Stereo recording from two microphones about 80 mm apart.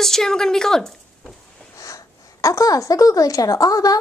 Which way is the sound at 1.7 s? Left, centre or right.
Left.